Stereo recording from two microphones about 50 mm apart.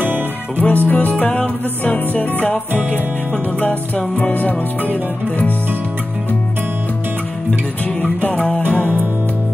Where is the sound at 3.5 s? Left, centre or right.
Left.